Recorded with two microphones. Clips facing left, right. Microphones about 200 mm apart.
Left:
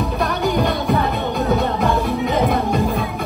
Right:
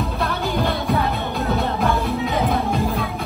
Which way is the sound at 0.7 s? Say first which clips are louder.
Left 2 dB; centre (ahead or behind).